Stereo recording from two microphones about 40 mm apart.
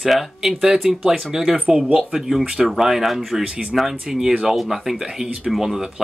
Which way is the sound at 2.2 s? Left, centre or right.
Centre.